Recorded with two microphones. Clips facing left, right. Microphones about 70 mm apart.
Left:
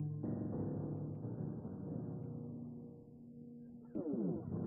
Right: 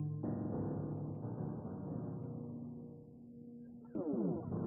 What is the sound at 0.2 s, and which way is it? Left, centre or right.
Music, right.